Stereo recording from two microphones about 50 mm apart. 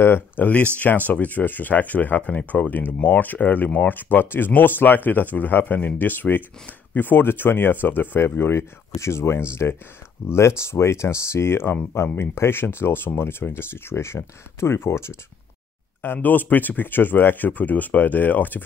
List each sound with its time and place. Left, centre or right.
0.4 s speech: left
16.0 s speech: left